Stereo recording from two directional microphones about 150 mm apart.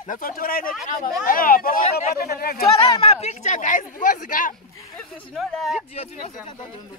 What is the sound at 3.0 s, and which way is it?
Speech, 45° left (ahead or behind).